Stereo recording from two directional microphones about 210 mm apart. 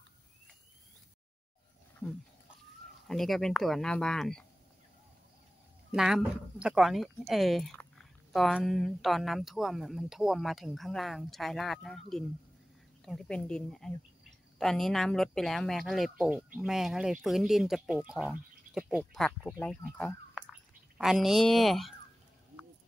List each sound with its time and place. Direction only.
3.1 s speech: centre (ahead or behind)
5.9 s speech: centre (ahead or behind)